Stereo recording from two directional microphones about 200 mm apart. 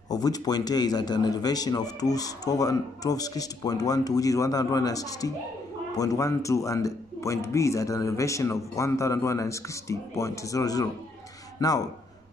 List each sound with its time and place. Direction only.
0.1 s speech: 20° left (ahead or behind)